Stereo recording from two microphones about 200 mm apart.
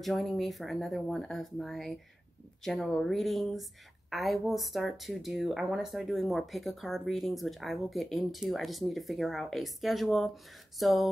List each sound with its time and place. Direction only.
0.0 s speech: centre (ahead or behind)